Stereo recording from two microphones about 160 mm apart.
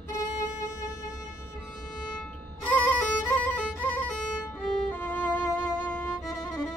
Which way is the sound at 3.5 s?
10° left (ahead or behind).